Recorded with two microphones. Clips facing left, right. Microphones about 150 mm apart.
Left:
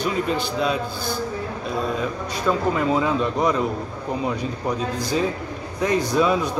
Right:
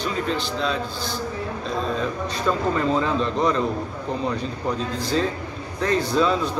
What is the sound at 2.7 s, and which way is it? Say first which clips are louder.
Speech: left 1 dB; 10° left (ahead or behind).